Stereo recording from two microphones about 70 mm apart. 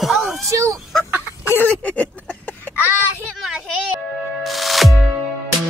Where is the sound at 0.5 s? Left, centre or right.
Right.